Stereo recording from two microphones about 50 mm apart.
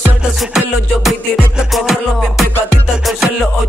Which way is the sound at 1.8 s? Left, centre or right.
Centre.